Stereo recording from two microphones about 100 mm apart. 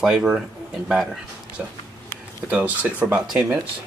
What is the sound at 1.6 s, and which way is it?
Speech, 15° right (ahead or behind).